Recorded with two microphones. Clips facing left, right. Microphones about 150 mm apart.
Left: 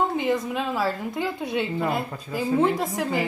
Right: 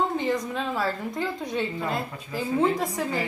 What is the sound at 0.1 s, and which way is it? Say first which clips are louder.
A woman's voice: left 2 dB; 5° left (ahead or behind).